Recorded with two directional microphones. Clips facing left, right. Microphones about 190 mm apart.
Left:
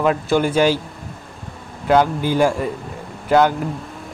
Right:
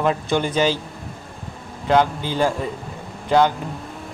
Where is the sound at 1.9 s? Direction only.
10° left (ahead or behind).